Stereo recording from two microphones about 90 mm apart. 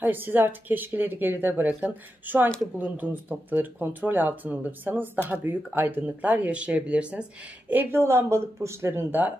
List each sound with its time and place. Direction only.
0.0 s speech: 20° right (ahead or behind)
7.7 s speech: 25° right (ahead or behind)